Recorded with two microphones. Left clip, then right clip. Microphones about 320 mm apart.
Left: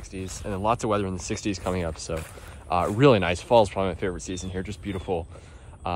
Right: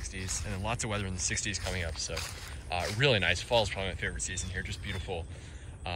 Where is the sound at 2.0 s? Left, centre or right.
Centre.